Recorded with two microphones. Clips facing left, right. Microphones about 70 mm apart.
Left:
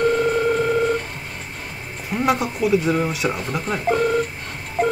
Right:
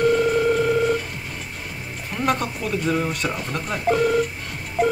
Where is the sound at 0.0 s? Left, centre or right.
Left.